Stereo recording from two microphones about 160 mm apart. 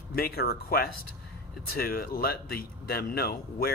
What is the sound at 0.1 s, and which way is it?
Speech, 70° left (ahead or behind).